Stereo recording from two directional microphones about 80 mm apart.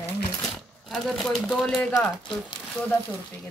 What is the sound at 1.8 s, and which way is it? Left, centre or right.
Speech, centre.